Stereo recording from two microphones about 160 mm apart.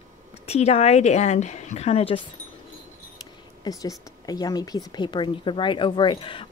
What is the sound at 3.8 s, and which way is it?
Speech, 25° left (ahead or behind).